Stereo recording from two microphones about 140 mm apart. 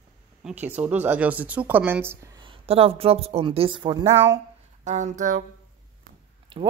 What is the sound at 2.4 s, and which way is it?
Speech, 40° right (ahead or behind).